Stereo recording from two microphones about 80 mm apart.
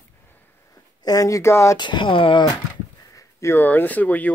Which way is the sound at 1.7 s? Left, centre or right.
Left.